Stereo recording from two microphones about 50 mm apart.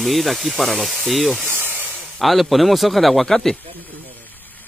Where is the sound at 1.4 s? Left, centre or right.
Right.